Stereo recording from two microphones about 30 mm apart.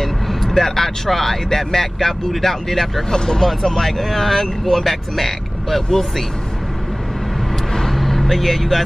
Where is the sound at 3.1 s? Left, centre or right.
Left.